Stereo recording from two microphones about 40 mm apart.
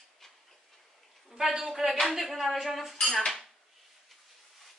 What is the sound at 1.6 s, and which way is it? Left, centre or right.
Speech, centre.